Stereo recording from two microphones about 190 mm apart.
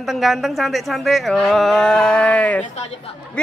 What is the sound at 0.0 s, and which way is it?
Speech, centre (ahead or behind).